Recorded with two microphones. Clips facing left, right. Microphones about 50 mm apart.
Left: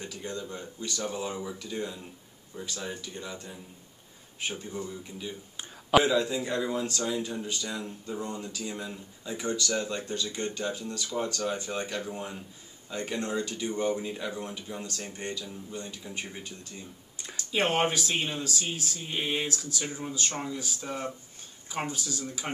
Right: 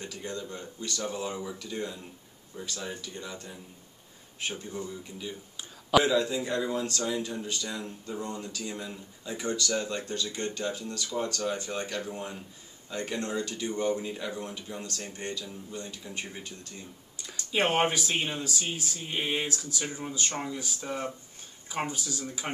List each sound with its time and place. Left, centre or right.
0.2 s speech: centre
5.6 s a sound: left
6.0 s speech: centre
17.5 s speech: centre